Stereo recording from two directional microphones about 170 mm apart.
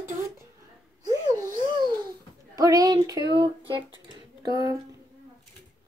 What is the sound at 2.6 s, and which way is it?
Speech, 20° right (ahead or behind).